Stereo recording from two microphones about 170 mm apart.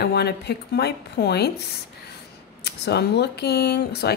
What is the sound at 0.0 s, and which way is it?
Speech, 70° left (ahead or behind).